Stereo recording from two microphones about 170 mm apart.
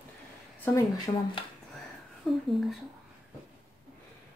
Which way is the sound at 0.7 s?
25° left (ahead or behind).